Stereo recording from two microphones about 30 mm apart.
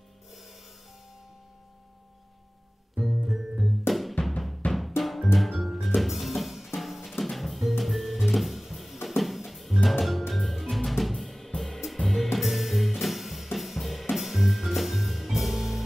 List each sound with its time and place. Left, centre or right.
3.3 s music: centre
3.5 s music: centre
4.2 s drum: left
5.0 s music: centre
9.8 s drum kit: centre
12.0 s music: centre